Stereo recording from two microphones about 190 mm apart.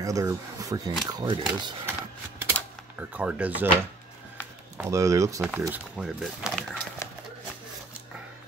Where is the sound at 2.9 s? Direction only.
10° right (ahead or behind).